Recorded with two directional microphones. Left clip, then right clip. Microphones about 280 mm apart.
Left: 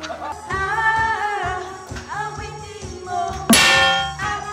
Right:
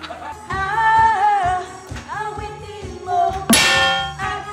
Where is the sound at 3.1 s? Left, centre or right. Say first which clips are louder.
Right 2 dB; centre.